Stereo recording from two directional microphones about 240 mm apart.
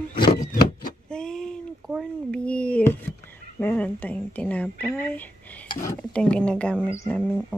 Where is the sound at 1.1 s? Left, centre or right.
Centre.